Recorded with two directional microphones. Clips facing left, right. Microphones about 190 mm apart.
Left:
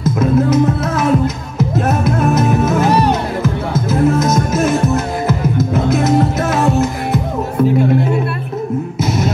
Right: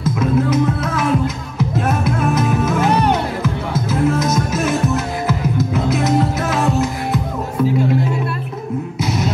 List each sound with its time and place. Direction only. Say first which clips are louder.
0.2 s music: left 4 dB; 40° left (ahead or behind)